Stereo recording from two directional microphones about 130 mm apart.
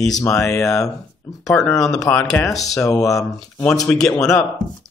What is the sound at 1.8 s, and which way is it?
Speech, 5° left (ahead or behind).